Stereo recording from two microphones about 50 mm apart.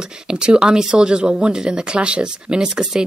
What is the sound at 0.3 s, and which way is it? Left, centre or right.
Speech, centre.